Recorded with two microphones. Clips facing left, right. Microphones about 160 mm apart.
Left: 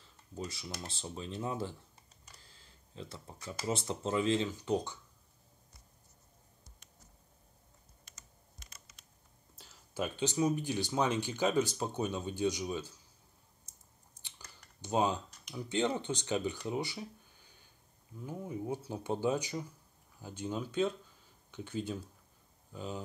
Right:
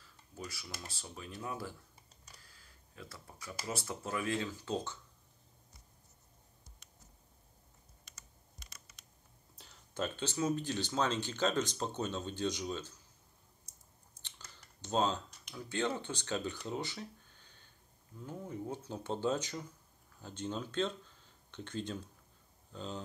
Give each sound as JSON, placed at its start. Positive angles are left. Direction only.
{"t": 0.0, "sound": "speech", "side_deg": 25}
{"t": 2.4, "sound": "computer keyboard", "side_deg": 25}
{"t": 3.6, "sound": "speech", "side_deg": 25}
{"t": 9.6, "sound": "speech", "side_deg": 5}
{"t": 14.2, "sound": "typing", "side_deg": 10}
{"t": 15.5, "sound": "speech", "side_deg": 15}